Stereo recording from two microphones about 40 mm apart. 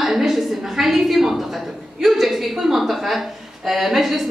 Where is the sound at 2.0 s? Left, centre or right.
Centre.